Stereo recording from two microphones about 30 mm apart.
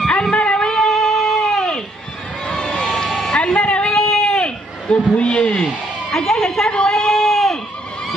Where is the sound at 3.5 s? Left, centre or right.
Left.